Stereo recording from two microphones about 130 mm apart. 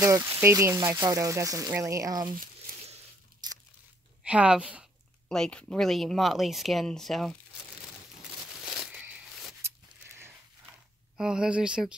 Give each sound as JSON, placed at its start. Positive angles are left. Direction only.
{"t": 0.0, "sound": "speech", "side_deg": -20}
{"t": 2.3, "sound": "a sound", "side_deg": -90}
{"t": 3.4, "sound": "crunch", "side_deg": -30}
{"t": 4.2, "sound": "speech", "side_deg": -10}
{"t": 5.3, "sound": "speech", "side_deg": 5}
{"t": 8.6, "sound": "a sound", "side_deg": -5}
{"t": 11.1, "sound": "speech", "side_deg": -5}